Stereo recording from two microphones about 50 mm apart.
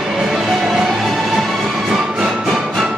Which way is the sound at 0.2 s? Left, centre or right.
Centre.